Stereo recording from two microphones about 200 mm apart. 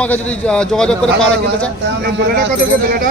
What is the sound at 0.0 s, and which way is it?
Speech, 5° left (ahead or behind).